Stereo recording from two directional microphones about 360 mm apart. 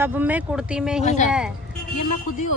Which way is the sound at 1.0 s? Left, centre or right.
Centre.